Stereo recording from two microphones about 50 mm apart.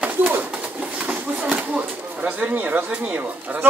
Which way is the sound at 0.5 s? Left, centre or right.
Right.